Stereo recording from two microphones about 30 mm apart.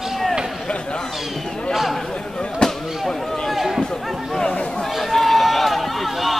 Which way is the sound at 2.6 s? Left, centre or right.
Left.